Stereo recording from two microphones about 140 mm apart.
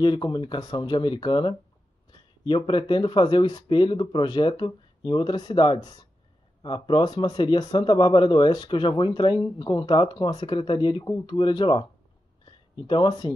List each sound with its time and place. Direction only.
0.0 s speech: 35° left (ahead or behind)